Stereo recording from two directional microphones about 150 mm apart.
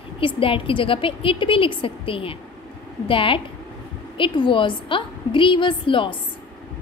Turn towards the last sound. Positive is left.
turn(degrees=35)  # may be behind; listen again after turning